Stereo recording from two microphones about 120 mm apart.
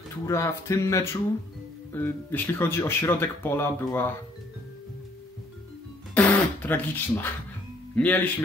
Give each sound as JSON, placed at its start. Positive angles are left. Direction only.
{"t": 0.2, "sound": "speech", "side_deg": 25}
{"t": 6.1, "sound": "a man's voice", "side_deg": 15}